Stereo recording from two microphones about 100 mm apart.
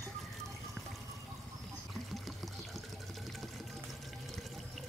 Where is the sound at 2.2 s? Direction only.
Centre (ahead or behind).